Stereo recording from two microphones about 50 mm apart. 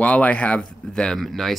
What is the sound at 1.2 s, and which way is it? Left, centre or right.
Speech, centre.